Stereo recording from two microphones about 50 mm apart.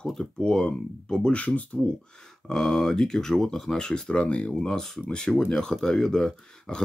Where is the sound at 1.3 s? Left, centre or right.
Left.